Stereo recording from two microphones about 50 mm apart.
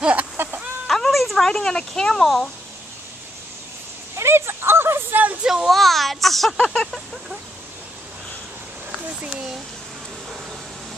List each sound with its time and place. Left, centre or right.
0.0 s chicken: right
0.8 s speech: centre
4.1 s speech: right
5.1 s speech: right
5.4 s speech: centre
5.7 s speech: centre
6.6 s a sound: centre